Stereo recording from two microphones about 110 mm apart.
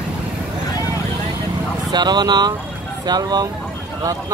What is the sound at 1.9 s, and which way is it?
Speech, 40° right (ahead or behind).